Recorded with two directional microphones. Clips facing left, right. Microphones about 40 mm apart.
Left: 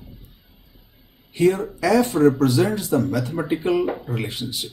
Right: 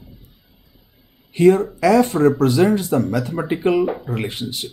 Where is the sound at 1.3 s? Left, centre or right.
Right.